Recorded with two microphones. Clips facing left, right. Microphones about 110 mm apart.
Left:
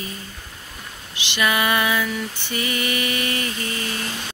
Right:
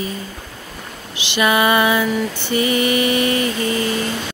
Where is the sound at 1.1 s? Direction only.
20° right (ahead or behind).